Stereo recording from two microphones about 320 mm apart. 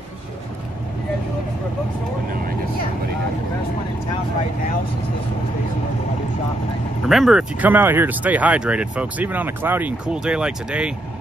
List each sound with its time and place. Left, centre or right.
7.1 s speech: centre